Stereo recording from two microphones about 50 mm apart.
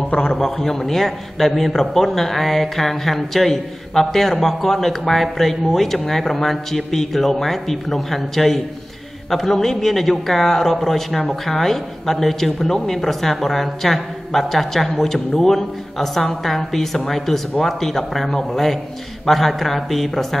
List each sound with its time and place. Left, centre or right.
0.1 s a man's voice: left
0.4 s a man's voice: centre